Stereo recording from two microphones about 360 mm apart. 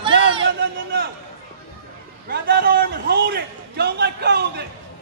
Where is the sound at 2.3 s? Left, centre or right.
Right.